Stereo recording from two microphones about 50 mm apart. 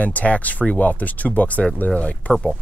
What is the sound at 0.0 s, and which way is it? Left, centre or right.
Speech, left.